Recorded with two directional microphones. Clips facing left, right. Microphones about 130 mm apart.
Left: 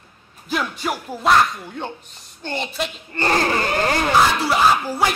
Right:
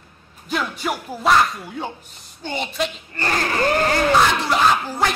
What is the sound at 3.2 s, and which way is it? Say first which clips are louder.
Speech: left 4 dB; 30° left (ahead or behind).